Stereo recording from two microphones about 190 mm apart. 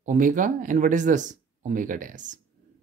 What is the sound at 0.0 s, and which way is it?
Speech, 40° right (ahead or behind).